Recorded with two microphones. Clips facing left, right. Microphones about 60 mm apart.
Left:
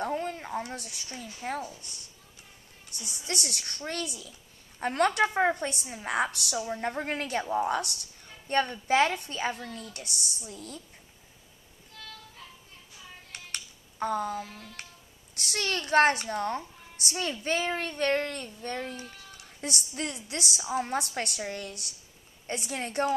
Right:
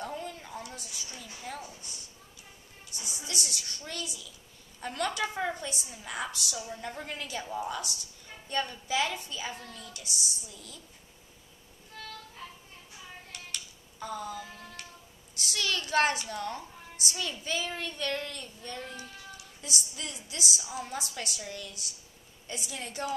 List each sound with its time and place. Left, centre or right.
0.0 s a sound: left
1.4 s speech: left
3.3 s a woman's voice: left
6.6 s a woman's voice: left
9.7 s a woman's voice: left
13.3 s music: left
15.3 s a woman's voice: left